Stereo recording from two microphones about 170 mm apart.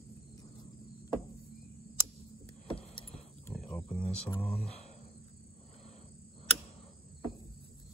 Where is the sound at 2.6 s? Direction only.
30° left (ahead or behind).